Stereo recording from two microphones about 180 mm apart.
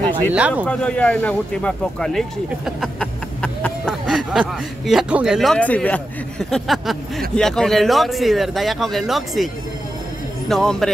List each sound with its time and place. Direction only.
0.3 s speech: 5° right (ahead or behind)
0.7 s speech: 5° left (ahead or behind)
10.5 s speech: 5° left (ahead or behind)